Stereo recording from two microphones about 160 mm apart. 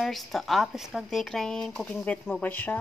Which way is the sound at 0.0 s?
Centre (ahead or behind).